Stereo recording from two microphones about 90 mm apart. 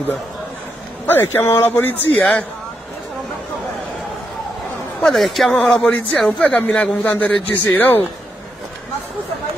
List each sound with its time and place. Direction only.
1.0 s a man's voice: 25° left (ahead or behind)
5.0 s a man's voice: centre (ahead or behind); by 8.1 s 20° left (ahead or behind)